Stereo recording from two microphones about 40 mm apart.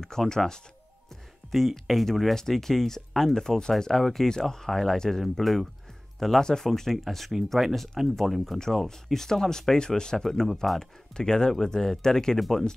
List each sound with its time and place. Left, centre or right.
0.1 s speech: centre
1.5 s speech: centre
5.4 s speech: centre
11.1 s speech: centre